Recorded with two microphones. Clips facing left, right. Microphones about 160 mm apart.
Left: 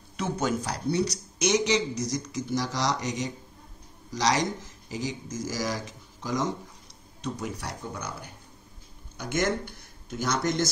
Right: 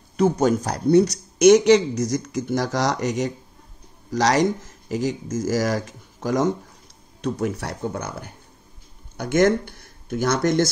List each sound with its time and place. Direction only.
0.2 s speech: 45° right (ahead or behind)